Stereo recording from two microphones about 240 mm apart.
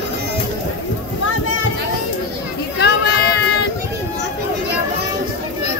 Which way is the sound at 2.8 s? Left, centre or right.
Left.